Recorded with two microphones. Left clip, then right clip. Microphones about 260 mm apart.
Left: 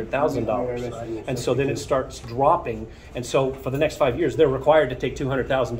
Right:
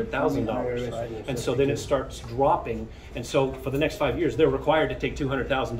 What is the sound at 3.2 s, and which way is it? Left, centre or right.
Speech, left.